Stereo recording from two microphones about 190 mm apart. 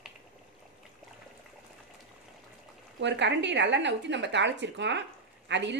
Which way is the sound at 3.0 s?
65° right (ahead or behind).